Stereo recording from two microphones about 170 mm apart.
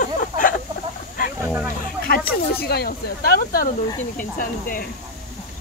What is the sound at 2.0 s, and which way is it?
Speech, 65° left (ahead or behind).